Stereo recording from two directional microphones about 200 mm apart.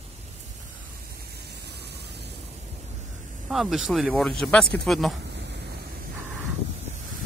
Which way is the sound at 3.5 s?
Centre (ahead or behind).